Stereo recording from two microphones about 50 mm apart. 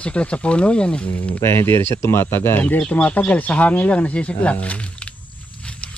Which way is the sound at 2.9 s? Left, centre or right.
Left.